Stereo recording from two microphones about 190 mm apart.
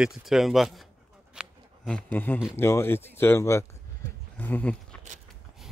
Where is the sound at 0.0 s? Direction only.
Centre (ahead or behind).